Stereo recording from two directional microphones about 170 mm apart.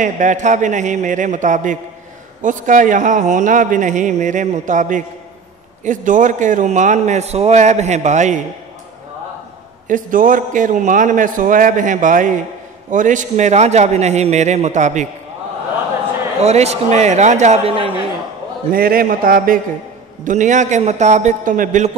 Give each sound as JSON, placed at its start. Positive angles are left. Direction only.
{"t": 0.0, "sound": "a man's voice", "side_deg": -45}
{"t": 9.8, "sound": "a man's voice", "side_deg": -50}
{"t": 16.3, "sound": "a man's voice", "side_deg": -40}
{"t": 18.7, "sound": "a man's voice", "side_deg": -60}